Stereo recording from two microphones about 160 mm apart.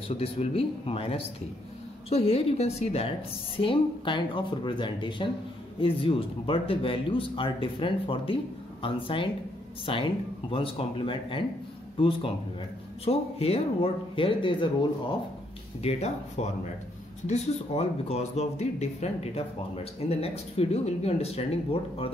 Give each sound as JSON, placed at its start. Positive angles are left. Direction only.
{"t": 0.1, "sound": "speech", "side_deg": 40}